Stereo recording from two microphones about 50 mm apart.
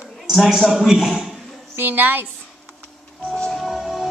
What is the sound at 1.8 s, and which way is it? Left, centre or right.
Speech, right.